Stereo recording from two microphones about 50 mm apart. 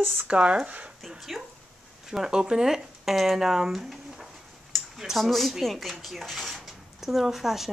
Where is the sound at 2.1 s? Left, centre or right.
Centre.